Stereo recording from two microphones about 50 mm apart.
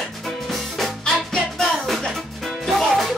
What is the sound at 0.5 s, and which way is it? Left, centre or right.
Music, centre.